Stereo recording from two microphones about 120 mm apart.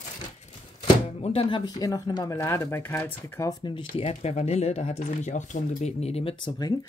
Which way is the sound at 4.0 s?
60° left (ahead or behind).